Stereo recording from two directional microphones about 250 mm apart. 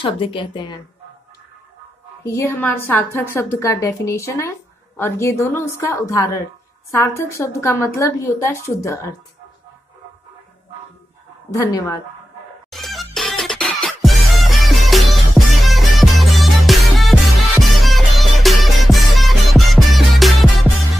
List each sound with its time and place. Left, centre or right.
0.0 s a woman's voice: centre
2.2 s speech: centre
11.5 s speech: centre
12.7 s music: centre